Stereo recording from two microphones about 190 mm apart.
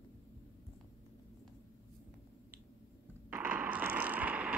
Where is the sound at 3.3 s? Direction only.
10° right (ahead or behind).